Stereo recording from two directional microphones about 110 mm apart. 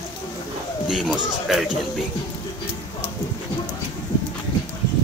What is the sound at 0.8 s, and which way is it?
Speech, 5° right (ahead or behind).